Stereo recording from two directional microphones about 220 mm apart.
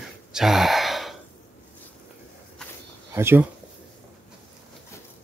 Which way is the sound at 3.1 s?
10° right (ahead or behind).